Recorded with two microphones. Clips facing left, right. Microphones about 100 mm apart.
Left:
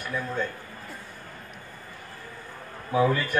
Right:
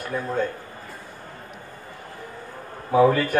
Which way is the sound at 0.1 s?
40° right (ahead or behind).